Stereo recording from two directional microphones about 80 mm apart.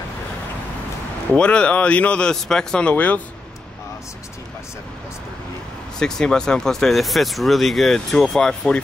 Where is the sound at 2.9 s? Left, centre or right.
Centre.